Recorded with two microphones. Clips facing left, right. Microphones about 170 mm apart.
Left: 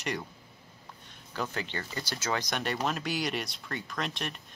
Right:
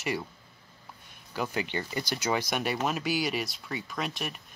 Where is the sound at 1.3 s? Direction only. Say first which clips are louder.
Right 3 dB; 10° right (ahead or behind).